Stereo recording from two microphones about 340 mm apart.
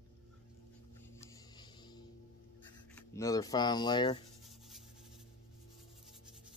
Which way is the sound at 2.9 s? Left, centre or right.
Centre.